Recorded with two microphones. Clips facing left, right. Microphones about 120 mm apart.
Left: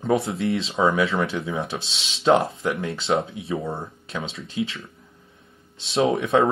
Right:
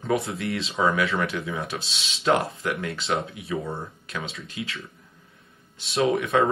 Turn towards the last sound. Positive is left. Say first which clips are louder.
# left 2 dB
turn(degrees=25)  # may be behind; listen again after turning